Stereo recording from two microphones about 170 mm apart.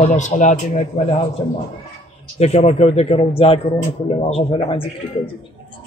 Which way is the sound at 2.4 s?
40° left (ahead or behind).